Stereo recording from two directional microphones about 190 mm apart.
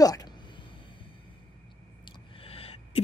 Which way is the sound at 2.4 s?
30° left (ahead or behind).